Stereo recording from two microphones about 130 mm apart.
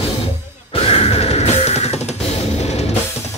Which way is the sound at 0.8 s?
50° left (ahead or behind).